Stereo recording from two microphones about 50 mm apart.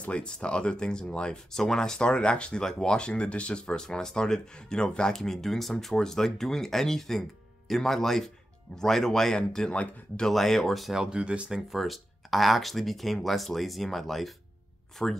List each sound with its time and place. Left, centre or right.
0.0 s speech: left
9.7 s speech: left
10.2 s speech: centre
11.0 s speech: right
11.7 s speech: centre
15.0 s speech: centre